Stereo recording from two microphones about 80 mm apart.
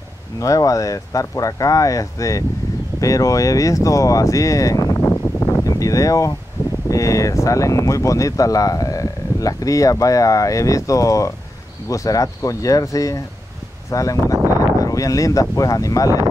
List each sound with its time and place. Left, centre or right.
0.4 s speech: left
4.9 s a sound: left
6.9 s speech: left